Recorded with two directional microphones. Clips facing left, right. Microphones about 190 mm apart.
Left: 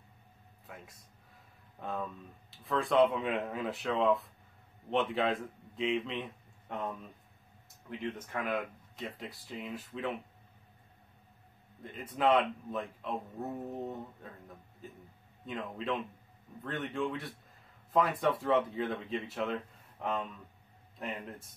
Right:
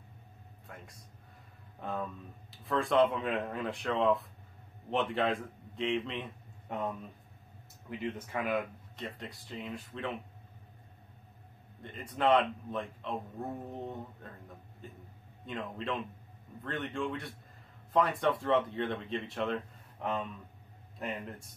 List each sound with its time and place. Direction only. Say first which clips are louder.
0.7 s a man's voice: even; centre (ahead or behind)
7.9 s speech: right 1 dB; 5° right (ahead or behind)
11.8 s speech: even; centre (ahead or behind)
15.4 s speech: even; centre (ahead or behind)